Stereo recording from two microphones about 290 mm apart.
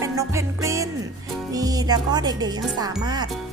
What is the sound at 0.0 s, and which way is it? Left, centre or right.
Music, centre.